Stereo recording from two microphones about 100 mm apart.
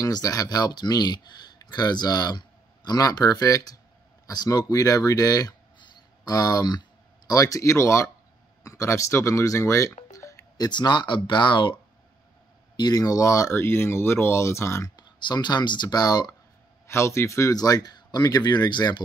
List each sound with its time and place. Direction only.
0.0 s speech: 35° left (ahead or behind)
10.1 s music: 30° left (ahead or behind)
10.7 s speech: 45° left (ahead or behind)
12.7 s speech: 40° left (ahead or behind)
13.6 s speech: 25° left (ahead or behind)
15.0 s speech: 45° left (ahead or behind)
16.8 s speech: 25° left (ahead or behind); by 18.9 s 45° left (ahead or behind)